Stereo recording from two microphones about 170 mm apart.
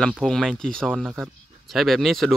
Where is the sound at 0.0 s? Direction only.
5° left (ahead or behind).